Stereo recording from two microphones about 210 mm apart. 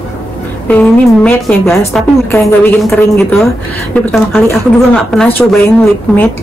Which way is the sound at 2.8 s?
Centre (ahead or behind).